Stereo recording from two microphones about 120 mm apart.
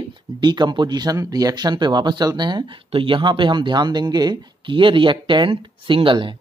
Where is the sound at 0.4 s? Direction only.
35° right (ahead or behind).